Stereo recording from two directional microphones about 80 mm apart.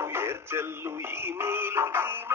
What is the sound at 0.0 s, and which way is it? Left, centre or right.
Music, right.